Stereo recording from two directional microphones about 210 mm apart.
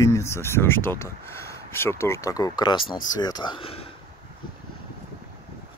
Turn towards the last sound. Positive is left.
turn(degrees=25)  # may be behind; listen again after turning